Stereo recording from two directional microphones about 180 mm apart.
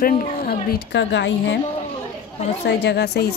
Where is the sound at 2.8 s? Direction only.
65° left (ahead or behind).